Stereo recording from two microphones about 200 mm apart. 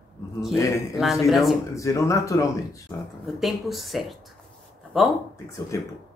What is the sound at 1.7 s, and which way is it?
Speech, 15° left (ahead or behind).